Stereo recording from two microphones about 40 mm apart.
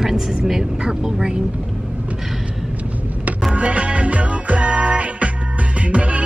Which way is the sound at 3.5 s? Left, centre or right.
Right.